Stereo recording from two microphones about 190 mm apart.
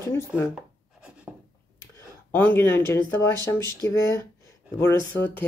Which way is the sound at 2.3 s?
10° left (ahead or behind).